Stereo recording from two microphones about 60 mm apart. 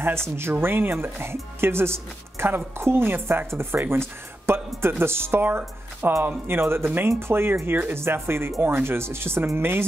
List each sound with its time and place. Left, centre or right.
0.4 s speech: right